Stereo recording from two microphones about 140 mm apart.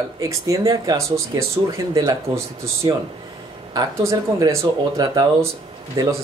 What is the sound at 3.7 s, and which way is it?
Speech, 25° right (ahead or behind).